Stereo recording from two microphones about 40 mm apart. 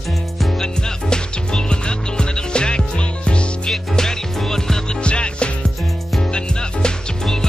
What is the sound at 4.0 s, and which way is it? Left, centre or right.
Music, centre.